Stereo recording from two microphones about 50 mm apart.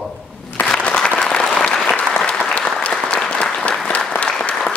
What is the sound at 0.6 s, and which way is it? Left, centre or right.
Applause, left.